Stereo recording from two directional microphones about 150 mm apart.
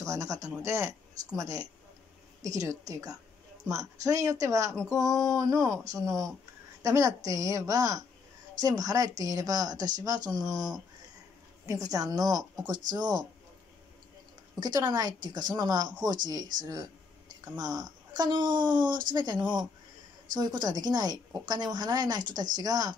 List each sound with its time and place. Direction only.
0.0 s speech: 20° right (ahead or behind)
2.9 s a woman's voice: 20° right (ahead or behind)
14.6 s speech: 25° right (ahead or behind)
17.6 s speech: 25° right (ahead or behind)